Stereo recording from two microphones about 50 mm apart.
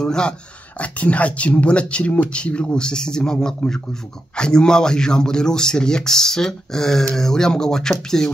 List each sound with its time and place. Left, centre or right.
0.0 s speech: centre
0.7 s speech: left; by 8.3 s centre